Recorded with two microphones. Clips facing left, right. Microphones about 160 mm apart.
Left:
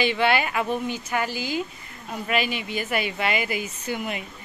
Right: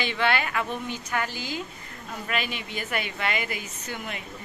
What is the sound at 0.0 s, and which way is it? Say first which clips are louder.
Speech: left 4 dB; 10° left (ahead or behind).